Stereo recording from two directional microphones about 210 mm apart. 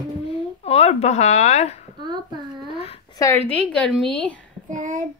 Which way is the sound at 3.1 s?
15° left (ahead or behind).